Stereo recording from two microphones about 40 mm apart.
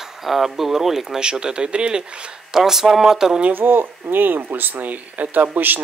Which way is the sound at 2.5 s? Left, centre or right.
Centre.